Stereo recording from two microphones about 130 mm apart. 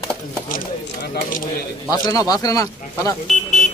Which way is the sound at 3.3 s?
65° left (ahead or behind).